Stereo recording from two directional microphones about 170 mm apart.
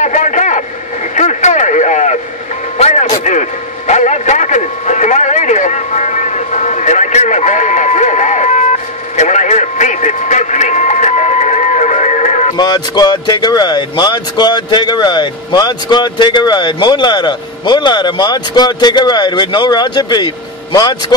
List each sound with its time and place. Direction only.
0.0 s radio: 45° left (ahead or behind)
2.8 s vehicle: 40° left (ahead or behind)
9.1 s a sound: 45° left (ahead or behind)
12.5 s speech: 25° left (ahead or behind)